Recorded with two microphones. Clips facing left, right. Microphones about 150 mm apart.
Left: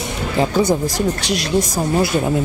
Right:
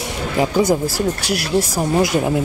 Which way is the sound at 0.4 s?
10° right (ahead or behind).